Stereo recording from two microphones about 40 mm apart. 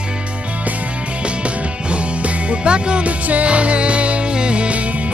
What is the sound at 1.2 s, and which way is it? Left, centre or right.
Music, right.